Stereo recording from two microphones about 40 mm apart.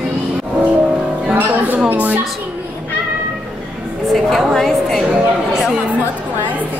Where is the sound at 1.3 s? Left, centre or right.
Right.